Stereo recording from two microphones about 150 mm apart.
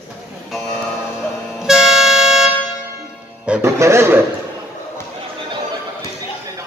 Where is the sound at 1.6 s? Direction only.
5° right (ahead or behind).